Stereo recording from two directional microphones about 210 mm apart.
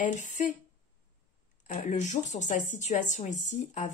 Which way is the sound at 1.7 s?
35° left (ahead or behind).